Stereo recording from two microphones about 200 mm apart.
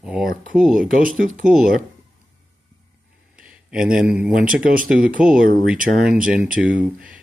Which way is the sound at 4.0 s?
5° right (ahead or behind).